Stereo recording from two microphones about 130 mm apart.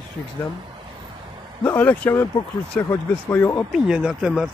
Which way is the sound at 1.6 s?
15° left (ahead or behind).